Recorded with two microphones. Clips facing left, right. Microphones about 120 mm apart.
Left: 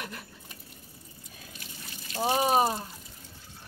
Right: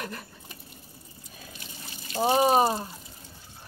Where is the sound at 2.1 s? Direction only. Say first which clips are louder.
Right 4 dB; 25° right (ahead or behind).